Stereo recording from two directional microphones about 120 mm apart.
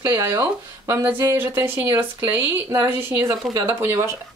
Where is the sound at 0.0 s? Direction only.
30° right (ahead or behind).